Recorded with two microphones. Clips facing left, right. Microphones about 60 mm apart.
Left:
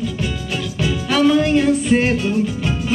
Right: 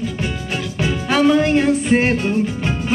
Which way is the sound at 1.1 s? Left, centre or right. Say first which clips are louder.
Even; right.